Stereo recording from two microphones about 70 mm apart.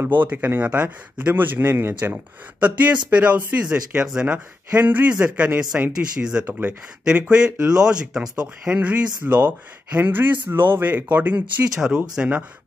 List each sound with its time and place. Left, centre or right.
0.0 s speech: right
3.1 s speech: centre
11.7 s speech: centre